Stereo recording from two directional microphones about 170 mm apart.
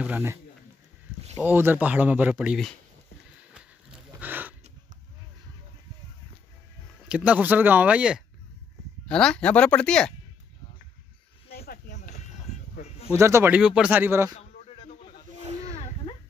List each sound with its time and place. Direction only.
0.0 s speech: 10° right (ahead or behind)
1.4 s speech: 10° right (ahead or behind)
4.2 s a sound: 10° right (ahead or behind)
7.1 s speech: 10° right (ahead or behind)
9.0 s speech: 5° left (ahead or behind)
11.5 s snake: 65° left (ahead or behind)
13.1 s speech: 15° right (ahead or behind)